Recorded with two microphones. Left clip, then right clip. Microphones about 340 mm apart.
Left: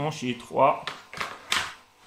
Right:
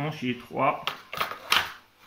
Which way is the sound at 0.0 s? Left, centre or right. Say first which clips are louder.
Left 1 dB; centre.